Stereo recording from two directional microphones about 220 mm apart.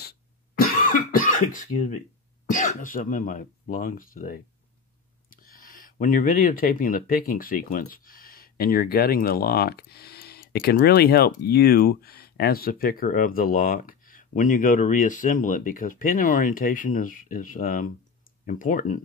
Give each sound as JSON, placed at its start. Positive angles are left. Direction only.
{"t": 0.0, "sound": "cough", "side_deg": 45}
{"t": 2.5, "sound": "speech", "side_deg": 35}